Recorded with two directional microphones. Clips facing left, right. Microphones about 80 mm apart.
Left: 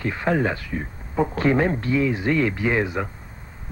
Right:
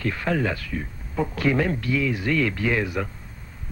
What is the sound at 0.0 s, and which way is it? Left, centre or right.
A man's voice, left.